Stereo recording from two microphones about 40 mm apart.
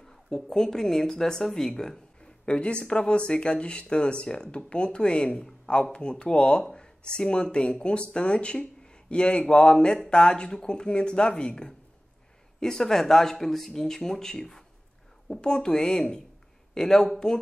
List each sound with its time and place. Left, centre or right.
0.3 s speech: centre
2.4 s speech: left